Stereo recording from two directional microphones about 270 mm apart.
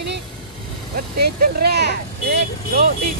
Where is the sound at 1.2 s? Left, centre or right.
Right.